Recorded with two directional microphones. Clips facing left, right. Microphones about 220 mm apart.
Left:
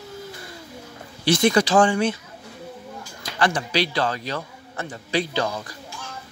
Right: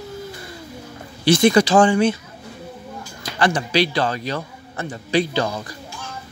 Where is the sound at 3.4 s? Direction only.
25° right (ahead or behind).